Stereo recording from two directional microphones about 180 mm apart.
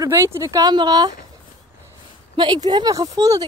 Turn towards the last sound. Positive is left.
turn(degrees=-20)  # may be behind; listen again after turning